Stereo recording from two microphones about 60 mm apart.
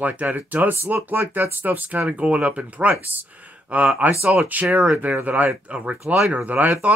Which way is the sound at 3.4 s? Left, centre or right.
Right.